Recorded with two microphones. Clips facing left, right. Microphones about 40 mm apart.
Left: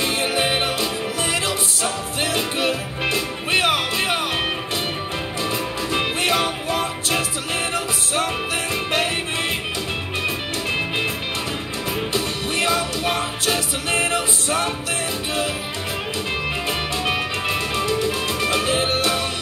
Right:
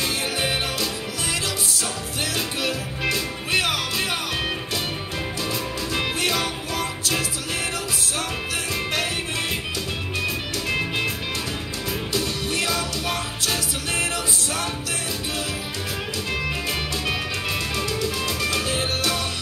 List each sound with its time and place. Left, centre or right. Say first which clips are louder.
0.0 s music: left 4 dB; left
2.3 s music: left 4 dB; left
5.9 s music: left 4 dB; left
10.2 s music: left 2 dB; left
12.1 s music: left 2 dB; left
17.0 s music: left 4 dB; left